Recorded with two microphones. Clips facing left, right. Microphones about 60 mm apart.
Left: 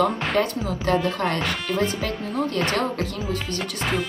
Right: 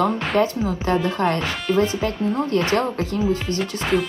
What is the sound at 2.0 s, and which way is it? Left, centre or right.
Speech, right.